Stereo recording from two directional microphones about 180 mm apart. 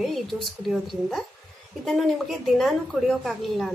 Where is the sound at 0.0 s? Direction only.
Centre (ahead or behind).